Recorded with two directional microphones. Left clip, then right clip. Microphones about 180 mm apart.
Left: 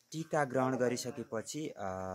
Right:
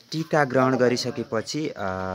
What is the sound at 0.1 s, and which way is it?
Speech, 5° left (ahead or behind).